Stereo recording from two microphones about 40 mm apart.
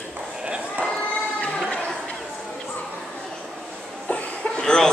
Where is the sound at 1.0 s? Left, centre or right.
Left.